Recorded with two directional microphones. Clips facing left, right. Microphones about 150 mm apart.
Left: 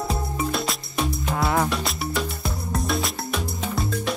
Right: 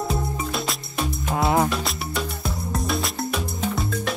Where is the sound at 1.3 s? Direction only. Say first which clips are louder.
Right 3 dB; 20° right (ahead or behind).